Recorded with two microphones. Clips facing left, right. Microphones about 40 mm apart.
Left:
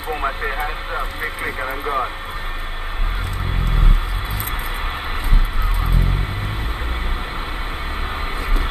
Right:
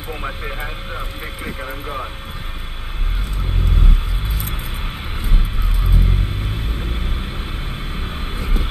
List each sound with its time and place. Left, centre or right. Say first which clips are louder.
0.1 s speech: left 5 dB; centre